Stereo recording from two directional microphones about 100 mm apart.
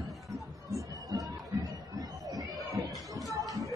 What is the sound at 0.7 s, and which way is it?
Music, 35° right (ahead or behind).